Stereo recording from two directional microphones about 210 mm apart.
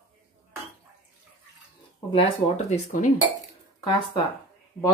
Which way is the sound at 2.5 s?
30° left (ahead or behind).